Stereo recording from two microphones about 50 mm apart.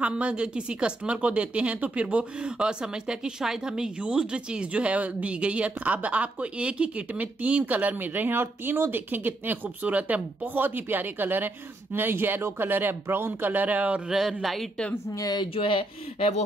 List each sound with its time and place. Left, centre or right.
0.0 s speech: right
9.8 s speech: right
13.5 s speech: right
14.0 s speech: centre